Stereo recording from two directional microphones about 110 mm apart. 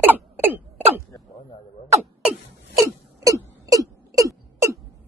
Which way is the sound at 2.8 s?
30° right (ahead or behind).